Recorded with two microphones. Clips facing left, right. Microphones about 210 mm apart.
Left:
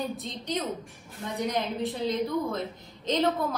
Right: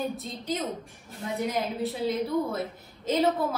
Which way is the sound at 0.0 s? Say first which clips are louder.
Right 1 dB; centre (ahead or behind).